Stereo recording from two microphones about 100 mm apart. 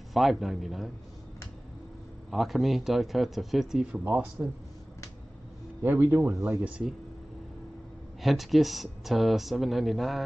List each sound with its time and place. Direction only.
0.1 s speech: centre (ahead or behind)
2.3 s speech: centre (ahead or behind)
4.0 s speech: 15° right (ahead or behind)
5.8 s a man's voice: 20° right (ahead or behind)
8.2 s speech: centre (ahead or behind)